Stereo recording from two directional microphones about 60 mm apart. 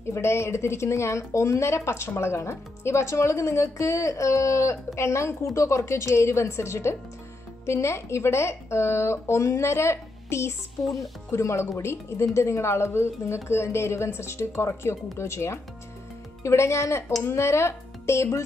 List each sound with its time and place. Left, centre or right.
0.1 s speech: left
10.8 s speech: centre
11.3 s speech: left